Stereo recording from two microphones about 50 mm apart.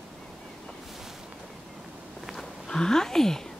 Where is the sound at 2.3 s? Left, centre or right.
Centre.